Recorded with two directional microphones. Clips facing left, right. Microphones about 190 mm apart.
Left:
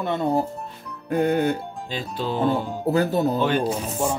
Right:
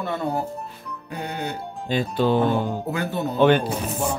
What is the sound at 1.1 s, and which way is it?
Music, 50° left (ahead or behind).